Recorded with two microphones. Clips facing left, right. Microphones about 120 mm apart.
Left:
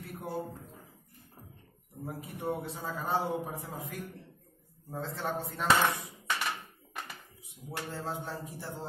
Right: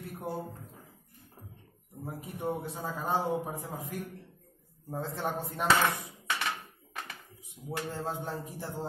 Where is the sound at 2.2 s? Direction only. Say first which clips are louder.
Right 1 dB; 15° right (ahead or behind).